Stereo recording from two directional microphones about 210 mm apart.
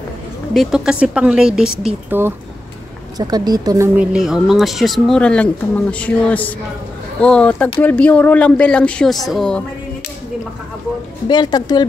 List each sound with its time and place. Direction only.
0.5 s speech: centre (ahead or behind)
11.2 s a woman's voice: 20° left (ahead or behind)